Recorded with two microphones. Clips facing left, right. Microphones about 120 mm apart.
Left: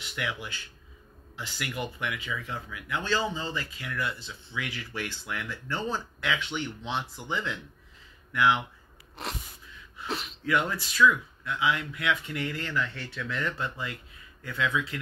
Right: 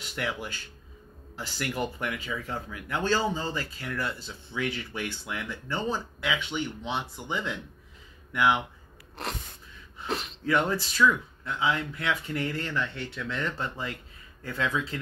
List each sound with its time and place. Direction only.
0.0 s speech: 35° right (ahead or behind)
4.6 s speech: 25° right (ahead or behind)
9.1 s sneeze: centre (ahead or behind)
10.0 s throat clearing: centre (ahead or behind)
10.4 s speech: 30° right (ahead or behind)